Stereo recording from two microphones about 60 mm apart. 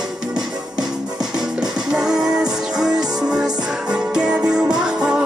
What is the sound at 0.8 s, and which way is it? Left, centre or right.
Music, centre.